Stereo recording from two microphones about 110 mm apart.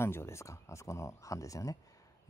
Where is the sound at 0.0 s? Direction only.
25° left (ahead or behind).